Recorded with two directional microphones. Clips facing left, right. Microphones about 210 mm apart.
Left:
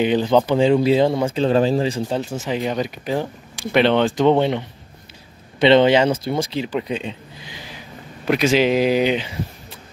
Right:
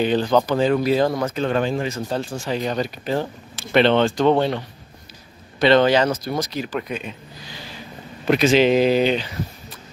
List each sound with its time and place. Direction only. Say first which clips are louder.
0.0 s speech: left 2 dB; 15° left (ahead or behind); by 2.0 s 30° left (ahead or behind)
2.0 s speech: left 2 dB; 20° left (ahead or behind)
8.3 s speech: right 1 dB; 10° left (ahead or behind)